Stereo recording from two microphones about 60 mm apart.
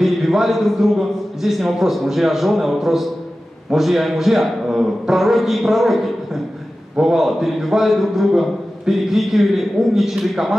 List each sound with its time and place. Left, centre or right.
0.0 s a man's voice: centre